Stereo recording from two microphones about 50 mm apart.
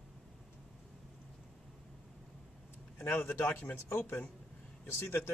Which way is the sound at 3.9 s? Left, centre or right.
Left.